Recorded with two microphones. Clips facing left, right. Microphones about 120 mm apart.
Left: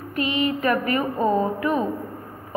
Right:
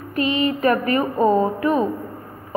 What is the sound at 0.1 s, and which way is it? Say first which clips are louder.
A woman's voice: right 3 dB; 35° right (ahead or behind).